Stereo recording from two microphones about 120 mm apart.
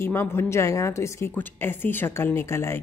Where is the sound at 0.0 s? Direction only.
20° left (ahead or behind).